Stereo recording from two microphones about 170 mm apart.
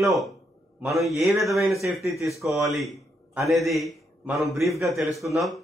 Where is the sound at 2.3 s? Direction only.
Centre (ahead or behind).